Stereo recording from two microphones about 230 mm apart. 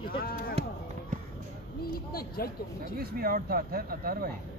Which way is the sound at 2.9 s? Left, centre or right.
Right.